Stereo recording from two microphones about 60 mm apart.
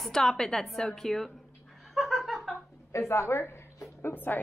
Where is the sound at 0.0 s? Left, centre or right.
Centre.